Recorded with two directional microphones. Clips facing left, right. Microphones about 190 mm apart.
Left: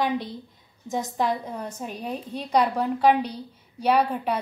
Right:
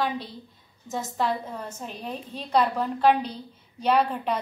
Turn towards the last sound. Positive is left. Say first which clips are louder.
# left 1 dB
turn(degrees=10)  # may be behind; listen again after turning